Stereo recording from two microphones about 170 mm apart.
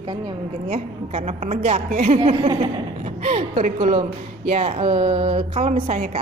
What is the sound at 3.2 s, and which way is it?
A woman's voice, 35° right (ahead or behind).